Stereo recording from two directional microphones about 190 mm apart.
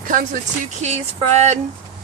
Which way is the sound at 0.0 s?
45° right (ahead or behind).